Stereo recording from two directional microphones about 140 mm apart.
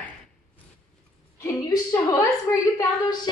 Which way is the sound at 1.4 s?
25° left (ahead or behind).